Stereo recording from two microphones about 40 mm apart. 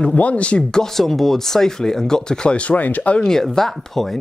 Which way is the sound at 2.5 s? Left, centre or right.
Left.